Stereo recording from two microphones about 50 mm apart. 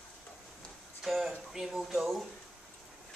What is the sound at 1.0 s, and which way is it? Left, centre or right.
Speech, centre.